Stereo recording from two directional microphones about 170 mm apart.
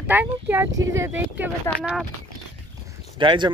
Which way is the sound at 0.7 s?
90° right.